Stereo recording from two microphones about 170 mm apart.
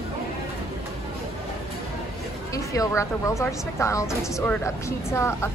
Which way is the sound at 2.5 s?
20° left (ahead or behind).